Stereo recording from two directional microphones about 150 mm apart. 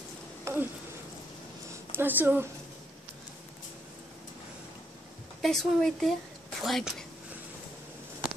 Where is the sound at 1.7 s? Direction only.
15° right (ahead or behind).